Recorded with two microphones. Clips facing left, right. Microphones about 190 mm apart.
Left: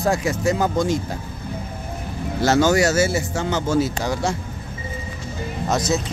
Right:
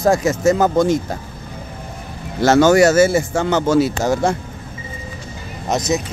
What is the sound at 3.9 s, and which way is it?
Speech, 50° right (ahead or behind).